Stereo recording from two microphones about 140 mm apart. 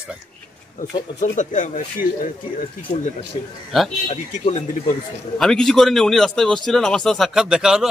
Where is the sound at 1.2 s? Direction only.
60° left (ahead or behind).